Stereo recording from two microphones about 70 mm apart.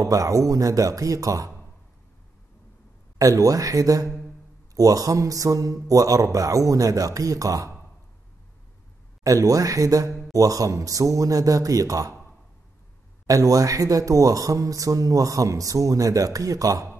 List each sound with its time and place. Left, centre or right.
0.0 s speech: right
3.2 s speech: right
9.2 s speech: right
13.3 s speech: right